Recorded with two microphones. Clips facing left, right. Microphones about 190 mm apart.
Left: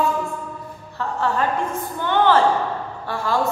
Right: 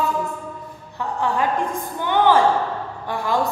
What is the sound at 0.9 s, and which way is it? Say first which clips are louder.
A woman's voice: even; 15° right (ahead or behind).